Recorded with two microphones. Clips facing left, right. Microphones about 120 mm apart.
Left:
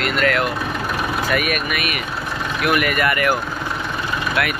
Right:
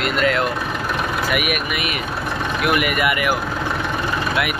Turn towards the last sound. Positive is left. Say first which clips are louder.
# left 1 dB
turn(degrees=-15)  # may be behind; listen again after turning